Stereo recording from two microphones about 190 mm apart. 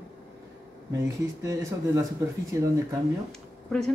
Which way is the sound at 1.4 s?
15° right (ahead or behind).